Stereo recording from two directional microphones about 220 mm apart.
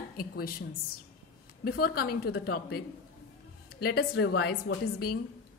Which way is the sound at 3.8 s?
50° left (ahead or behind).